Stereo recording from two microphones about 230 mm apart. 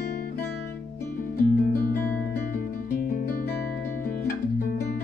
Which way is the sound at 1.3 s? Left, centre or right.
Left.